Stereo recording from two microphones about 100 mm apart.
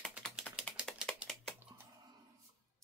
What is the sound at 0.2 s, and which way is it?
Typing, centre (ahead or behind).